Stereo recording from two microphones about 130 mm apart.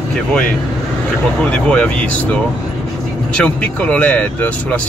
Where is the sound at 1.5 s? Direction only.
10° left (ahead or behind).